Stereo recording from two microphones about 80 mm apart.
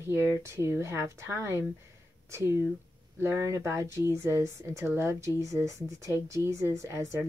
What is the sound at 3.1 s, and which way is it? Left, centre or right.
Speech, right.